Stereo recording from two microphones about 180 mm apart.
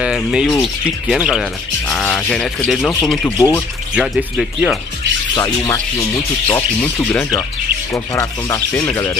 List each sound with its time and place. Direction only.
0.0 s speech: 5° right (ahead or behind); by 3.6 s 15° left (ahead or behind)
3.9 s speech: centre (ahead or behind)
5.3 s speech: 20° left (ahead or behind)